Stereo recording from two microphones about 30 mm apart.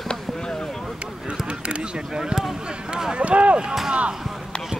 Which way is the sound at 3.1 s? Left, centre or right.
Right.